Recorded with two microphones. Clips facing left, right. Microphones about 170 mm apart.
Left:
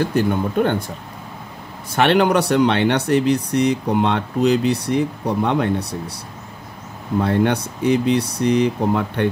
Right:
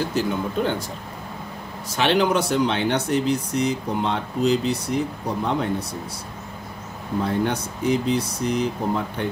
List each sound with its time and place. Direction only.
0.1 s speech: 55° left (ahead or behind)
1.9 s speech: 60° left (ahead or behind)
7.2 s speech: 65° left (ahead or behind)